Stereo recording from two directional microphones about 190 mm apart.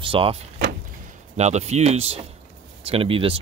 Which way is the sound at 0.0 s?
30° right (ahead or behind).